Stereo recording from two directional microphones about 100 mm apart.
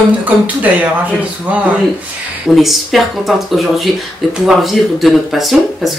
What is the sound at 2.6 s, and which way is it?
Speech, centre (ahead or behind).